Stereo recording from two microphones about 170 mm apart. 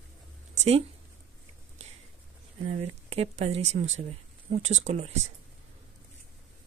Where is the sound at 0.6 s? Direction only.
40° right (ahead or behind).